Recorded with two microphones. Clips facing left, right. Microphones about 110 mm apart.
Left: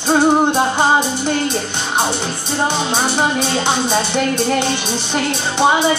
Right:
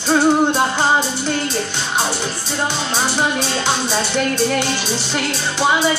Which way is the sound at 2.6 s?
20° left (ahead or behind).